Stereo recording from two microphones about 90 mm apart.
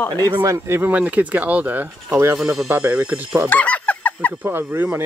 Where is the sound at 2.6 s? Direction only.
20° right (ahead or behind).